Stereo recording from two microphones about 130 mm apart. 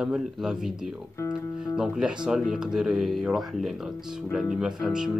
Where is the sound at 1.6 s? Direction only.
5° right (ahead or behind).